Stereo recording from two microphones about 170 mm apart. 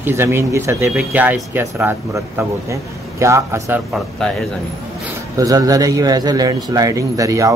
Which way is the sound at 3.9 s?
5° left (ahead or behind).